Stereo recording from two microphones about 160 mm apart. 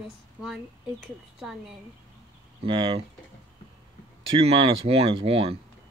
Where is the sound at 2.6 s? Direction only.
35° right (ahead or behind).